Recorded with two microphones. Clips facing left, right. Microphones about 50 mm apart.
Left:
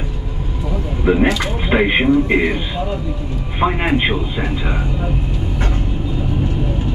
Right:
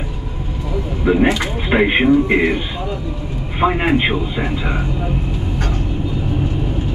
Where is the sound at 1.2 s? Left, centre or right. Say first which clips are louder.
Right 1 dB; right.